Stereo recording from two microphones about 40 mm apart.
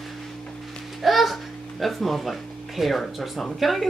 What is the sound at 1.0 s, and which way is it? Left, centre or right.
A woman's voice, centre.